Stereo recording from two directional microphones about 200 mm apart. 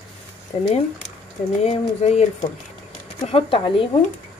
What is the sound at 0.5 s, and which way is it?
Speech, 30° left (ahead or behind).